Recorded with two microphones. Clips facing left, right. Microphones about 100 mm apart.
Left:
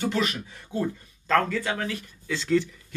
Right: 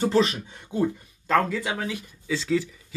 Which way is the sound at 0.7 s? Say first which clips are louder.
Right 3 dB; 10° right (ahead or behind).